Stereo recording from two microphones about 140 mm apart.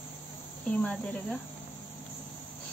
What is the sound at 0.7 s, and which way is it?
Speech, 10° left (ahead or behind).